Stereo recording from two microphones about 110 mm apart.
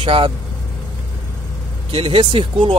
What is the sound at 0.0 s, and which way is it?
Speech, 50° right (ahead or behind).